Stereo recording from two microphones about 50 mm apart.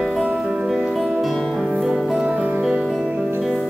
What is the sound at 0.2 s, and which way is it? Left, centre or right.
Music, centre.